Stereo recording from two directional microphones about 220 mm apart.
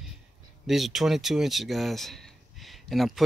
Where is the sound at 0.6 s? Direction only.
Centre (ahead or behind).